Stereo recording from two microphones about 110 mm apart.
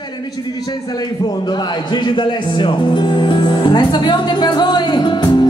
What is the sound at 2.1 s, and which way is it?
Speech, 45° left (ahead or behind).